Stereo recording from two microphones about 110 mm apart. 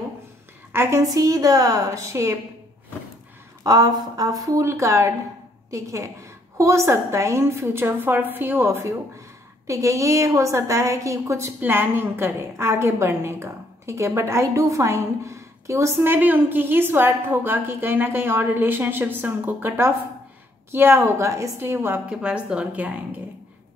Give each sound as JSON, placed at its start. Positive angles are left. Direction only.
{"t": 0.7, "sound": "a woman's voice", "side_deg": -25}
{"t": 3.6, "sound": "a woman's voice", "side_deg": -35}
{"t": 22.1, "sound": "speech", "side_deg": -10}